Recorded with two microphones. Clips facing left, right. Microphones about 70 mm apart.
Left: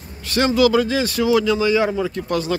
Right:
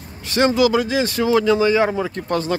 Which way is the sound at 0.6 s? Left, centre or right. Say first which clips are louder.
Left 1 dB; right.